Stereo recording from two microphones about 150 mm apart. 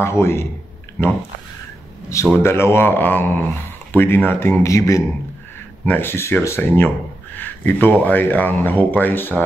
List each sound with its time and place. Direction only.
0.0 s speech: 20° left (ahead or behind)
2.3 s speech: 15° left (ahead or behind)